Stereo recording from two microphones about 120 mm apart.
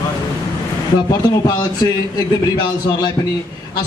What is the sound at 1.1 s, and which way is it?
Speech, 35° left (ahead or behind).